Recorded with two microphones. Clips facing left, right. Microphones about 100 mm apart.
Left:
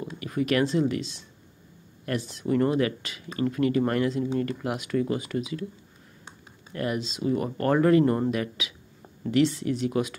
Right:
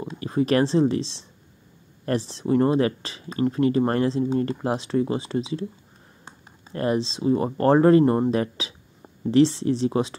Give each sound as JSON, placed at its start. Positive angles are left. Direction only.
{"t": 0.0, "sound": "speech", "side_deg": -30}
{"t": 6.7, "sound": "speech", "side_deg": -35}
{"t": 8.0, "sound": "speech", "side_deg": -20}
{"t": 8.3, "sound": "speech", "side_deg": -30}